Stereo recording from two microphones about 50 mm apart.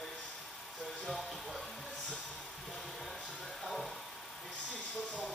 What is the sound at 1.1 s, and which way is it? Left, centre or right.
Music, centre.